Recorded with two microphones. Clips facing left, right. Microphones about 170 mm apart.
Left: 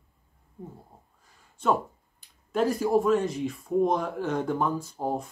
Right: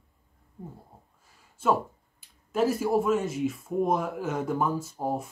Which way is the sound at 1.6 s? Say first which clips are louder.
Even; 5° right (ahead or behind).